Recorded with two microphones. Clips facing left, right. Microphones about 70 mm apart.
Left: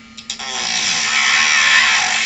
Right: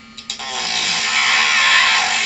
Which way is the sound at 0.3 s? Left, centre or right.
Centre.